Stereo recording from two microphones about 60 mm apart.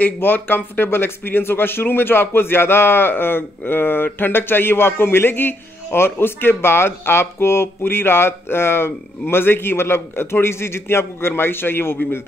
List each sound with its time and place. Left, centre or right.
0.0 s speech: left